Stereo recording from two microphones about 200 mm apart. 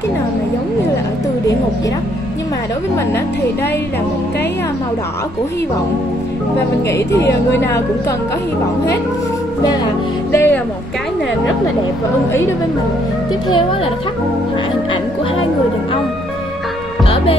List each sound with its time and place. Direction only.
6.9 s a woman's voice: 15° left (ahead or behind)
10.3 s music: 10° left (ahead or behind)
17.0 s music: 25° left (ahead or behind)